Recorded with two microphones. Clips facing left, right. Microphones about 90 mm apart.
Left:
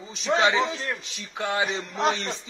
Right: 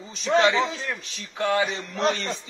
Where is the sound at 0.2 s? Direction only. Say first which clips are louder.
Right 2 dB; 5° left (ahead or behind).